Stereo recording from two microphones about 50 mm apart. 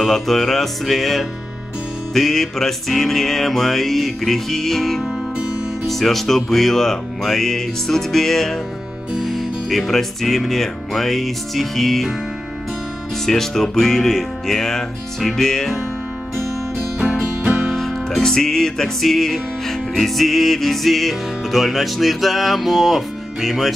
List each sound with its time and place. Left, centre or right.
0.0 s music: centre
13.2 s music: centre
17.4 s music: centre
17.6 s music: centre